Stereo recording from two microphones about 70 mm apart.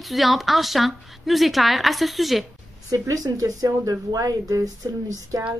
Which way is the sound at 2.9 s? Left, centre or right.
Right.